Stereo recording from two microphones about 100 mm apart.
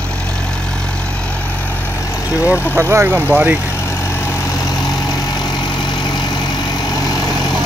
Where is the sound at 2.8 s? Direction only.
25° right (ahead or behind).